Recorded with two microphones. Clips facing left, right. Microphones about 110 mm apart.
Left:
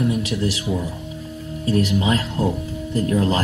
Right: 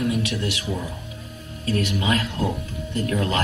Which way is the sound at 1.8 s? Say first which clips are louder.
Left 3 dB; 30° left (ahead or behind).